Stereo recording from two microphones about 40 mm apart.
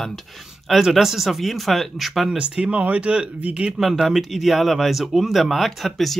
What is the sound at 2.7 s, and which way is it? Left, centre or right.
Speech, right.